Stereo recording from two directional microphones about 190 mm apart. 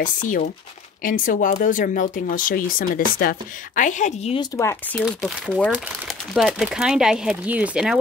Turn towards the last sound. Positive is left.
turn(degrees=-5)  # may be behind; listen again after turning